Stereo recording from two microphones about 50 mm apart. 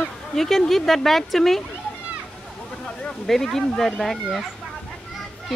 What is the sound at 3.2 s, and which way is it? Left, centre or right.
Speech, centre.